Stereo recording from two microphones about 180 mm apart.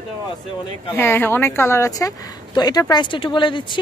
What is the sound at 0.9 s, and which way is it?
Speech, 10° left (ahead or behind).